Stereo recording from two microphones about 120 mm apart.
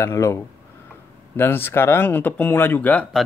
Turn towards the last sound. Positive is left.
turn(degrees=15)  # may be behind; listen again after turning